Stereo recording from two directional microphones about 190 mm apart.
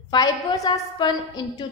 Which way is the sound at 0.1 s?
20° left (ahead or behind).